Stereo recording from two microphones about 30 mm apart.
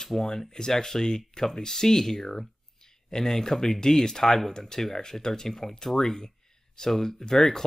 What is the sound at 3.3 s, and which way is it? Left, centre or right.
Speech, centre.